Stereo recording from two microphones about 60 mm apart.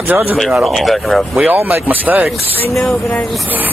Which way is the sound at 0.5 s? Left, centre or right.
Centre.